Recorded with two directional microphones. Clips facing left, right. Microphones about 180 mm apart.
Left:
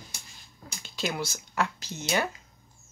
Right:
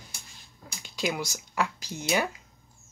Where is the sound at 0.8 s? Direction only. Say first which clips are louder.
Right 1 dB; 15° right (ahead or behind).